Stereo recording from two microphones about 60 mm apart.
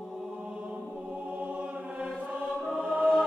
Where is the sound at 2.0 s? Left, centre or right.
Centre.